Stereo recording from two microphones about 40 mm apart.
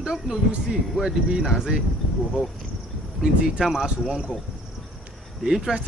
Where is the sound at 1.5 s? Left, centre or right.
Centre.